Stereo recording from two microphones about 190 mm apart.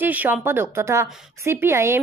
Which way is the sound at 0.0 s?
10° right (ahead or behind).